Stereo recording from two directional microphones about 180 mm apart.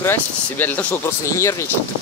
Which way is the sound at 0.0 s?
10° left (ahead or behind).